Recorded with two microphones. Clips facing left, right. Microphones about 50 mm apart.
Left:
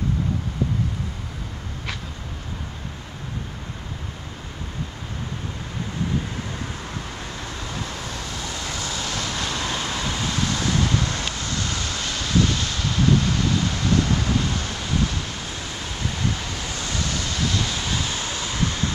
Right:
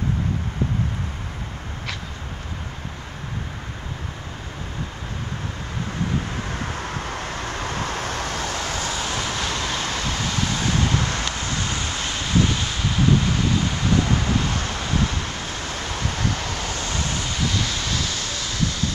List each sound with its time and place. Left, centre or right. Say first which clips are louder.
7.1 s vehicle: right 5 dB; right
8.9 s vehicle: right 2 dB; right
9.2 s vehicle: right 1 dB; centre
10.4 s vehicle: even; centre
11.3 s wind: right 1 dB; right
16.6 s vehicle: right 2 dB; right
16.9 s waves: right 1 dB; right
17.4 s vehicle: even; centre